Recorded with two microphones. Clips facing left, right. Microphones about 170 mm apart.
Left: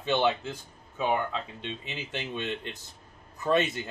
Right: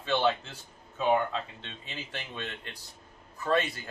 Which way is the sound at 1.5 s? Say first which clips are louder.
Left 5 dB; 20° left (ahead or behind).